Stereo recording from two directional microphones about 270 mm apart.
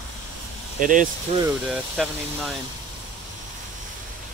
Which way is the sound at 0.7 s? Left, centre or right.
Right.